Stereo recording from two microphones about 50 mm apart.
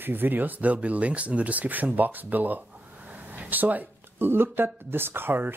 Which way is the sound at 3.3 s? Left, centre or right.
Right.